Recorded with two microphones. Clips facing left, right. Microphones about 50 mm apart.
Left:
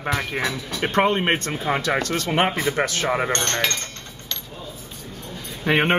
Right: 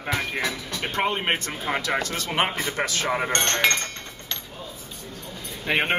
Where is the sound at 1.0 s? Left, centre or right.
Left.